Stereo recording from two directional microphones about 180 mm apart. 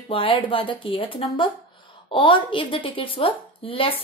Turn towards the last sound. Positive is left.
turn(degrees=30)  # may be behind; listen again after turning